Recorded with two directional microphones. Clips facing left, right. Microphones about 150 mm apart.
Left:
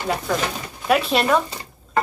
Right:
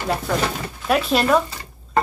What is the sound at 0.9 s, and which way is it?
Speech, centre (ahead or behind).